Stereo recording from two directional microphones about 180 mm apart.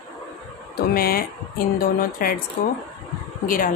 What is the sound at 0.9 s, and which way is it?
A woman's voice, 55° left (ahead or behind).